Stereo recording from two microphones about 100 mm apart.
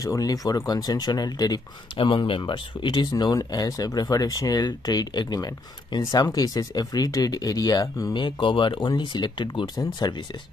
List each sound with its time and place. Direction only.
0.0 s speech: 35° left (ahead or behind)
2.0 s speech: 60° left (ahead or behind); by 8.1 s 40° left (ahead or behind)
8.1 s speech: 55° left (ahead or behind)